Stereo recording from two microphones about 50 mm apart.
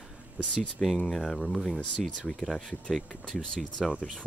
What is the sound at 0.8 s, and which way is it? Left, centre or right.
Speech, centre.